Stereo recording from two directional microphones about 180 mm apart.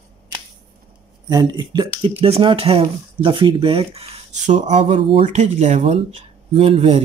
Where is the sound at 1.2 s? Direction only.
20° right (ahead or behind).